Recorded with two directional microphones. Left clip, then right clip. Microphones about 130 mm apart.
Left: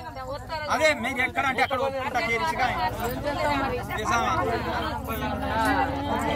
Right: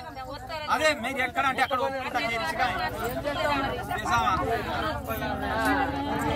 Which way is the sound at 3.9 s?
5° left (ahead or behind).